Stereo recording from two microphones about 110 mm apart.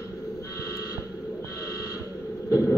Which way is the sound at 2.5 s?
25° left (ahead or behind).